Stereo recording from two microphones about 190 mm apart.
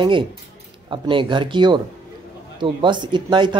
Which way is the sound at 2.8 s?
25° right (ahead or behind).